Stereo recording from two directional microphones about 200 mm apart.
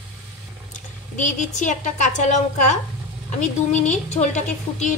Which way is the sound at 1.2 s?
40° left (ahead or behind).